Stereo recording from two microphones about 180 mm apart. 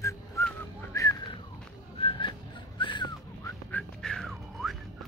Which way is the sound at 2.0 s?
30° left (ahead or behind).